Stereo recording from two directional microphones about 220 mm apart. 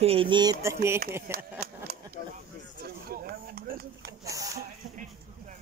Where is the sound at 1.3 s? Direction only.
10° right (ahead or behind).